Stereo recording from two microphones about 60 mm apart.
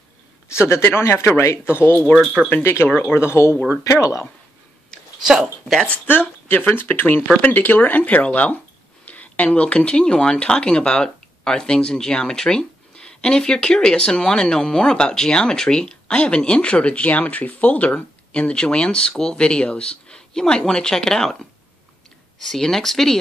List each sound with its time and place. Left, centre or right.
0.5 s speech: left
2.5 s speech: left
3.8 s speech: left
5.4 s speech: centre
5.9 s speech: left; by 23.1 s centre